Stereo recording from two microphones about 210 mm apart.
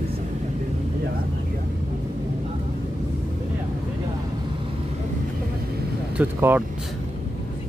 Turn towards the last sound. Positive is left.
turn(degrees=-10)  # may be behind; listen again after turning